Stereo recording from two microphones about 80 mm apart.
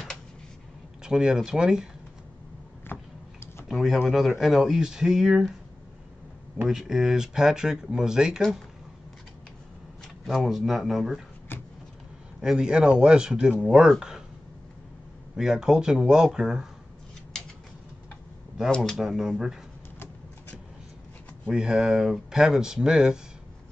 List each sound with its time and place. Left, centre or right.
1.0 s speech: centre
2.9 s tick-tock: left
3.6 s speech: centre
6.7 s speech: centre
10.2 s speech: centre
12.4 s speech: centre
15.3 s speech: centre
18.9 s speech: centre
21.5 s speech: centre